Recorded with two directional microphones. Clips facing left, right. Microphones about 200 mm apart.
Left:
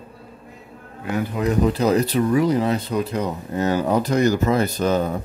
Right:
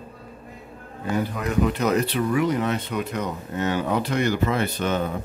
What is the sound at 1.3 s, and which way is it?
Speech, 30° left (ahead or behind).